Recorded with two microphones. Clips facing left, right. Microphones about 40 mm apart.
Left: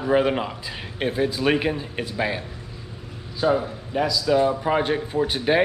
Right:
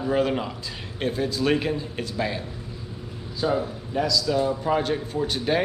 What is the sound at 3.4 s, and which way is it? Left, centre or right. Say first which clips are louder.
A man's voice: left 3 dB; centre.